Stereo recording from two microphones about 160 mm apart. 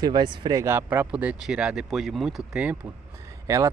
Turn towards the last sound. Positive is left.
turn(degrees=-20)  # may be behind; listen again after turning